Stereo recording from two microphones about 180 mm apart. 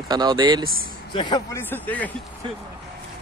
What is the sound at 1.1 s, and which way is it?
Speech, 25° left (ahead or behind).